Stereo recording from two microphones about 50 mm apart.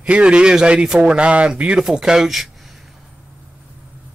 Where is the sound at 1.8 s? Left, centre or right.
Centre.